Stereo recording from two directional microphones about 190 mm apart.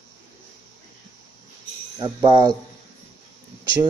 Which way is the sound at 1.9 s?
20° right (ahead or behind).